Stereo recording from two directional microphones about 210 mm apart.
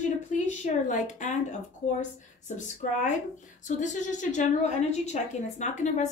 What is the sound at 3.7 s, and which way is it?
A woman's voice, 35° left (ahead or behind).